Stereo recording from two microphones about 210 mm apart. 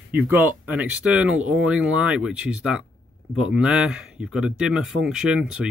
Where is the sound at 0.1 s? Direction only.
10° right (ahead or behind).